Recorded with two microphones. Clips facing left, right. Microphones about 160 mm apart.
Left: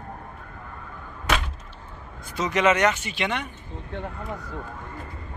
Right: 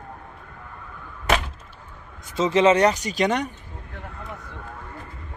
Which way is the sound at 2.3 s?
25° right (ahead or behind).